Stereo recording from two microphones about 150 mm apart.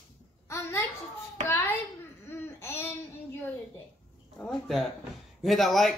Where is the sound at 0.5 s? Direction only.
15° left (ahead or behind).